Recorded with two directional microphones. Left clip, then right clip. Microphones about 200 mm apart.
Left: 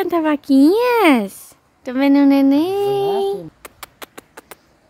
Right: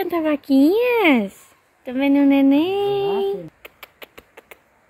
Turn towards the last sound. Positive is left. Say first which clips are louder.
# left 4 dB
turn(degrees=25)  # may be behind; listen again after turning